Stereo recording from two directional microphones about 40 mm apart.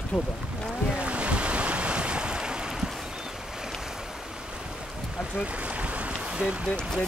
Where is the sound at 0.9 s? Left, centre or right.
Right.